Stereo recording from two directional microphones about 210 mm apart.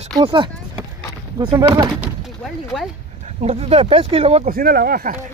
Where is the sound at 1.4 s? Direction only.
25° right (ahead or behind).